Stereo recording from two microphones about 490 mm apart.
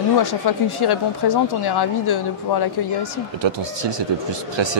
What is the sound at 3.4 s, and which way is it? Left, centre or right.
Speech, right.